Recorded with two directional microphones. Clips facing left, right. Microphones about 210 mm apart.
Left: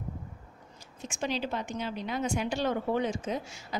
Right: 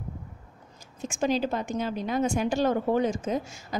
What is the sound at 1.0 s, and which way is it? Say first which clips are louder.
A woman's voice: right 7 dB; 45° right (ahead or behind).